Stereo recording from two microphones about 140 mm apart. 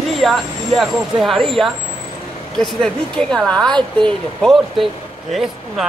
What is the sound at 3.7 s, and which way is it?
Speech, 35° right (ahead or behind).